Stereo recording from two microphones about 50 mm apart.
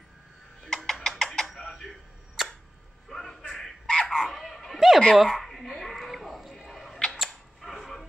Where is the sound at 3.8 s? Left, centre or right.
Centre.